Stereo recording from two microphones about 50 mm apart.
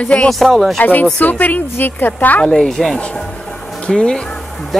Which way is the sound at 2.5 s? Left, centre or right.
Centre.